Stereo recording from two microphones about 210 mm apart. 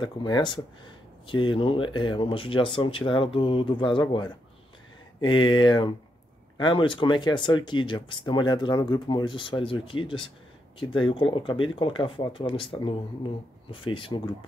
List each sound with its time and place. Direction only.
0.0 s speech: 20° left (ahead or behind)